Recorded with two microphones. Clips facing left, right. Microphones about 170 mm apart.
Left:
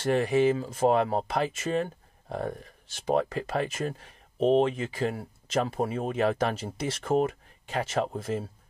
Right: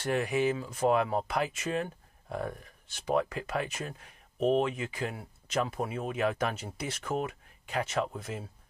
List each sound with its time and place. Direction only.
0.0 s speech: 30° left (ahead or behind); by 8.1 s 45° left (ahead or behind)